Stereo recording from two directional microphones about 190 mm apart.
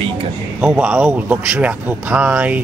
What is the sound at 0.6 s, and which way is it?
Speech, 5° right (ahead or behind).